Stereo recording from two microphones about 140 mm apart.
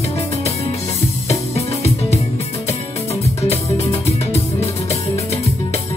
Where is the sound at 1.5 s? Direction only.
50° left (ahead or behind).